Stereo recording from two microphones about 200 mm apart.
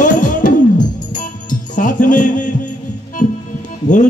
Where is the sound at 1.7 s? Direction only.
40° left (ahead or behind).